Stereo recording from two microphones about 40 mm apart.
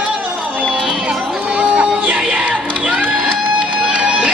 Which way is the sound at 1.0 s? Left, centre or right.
Right.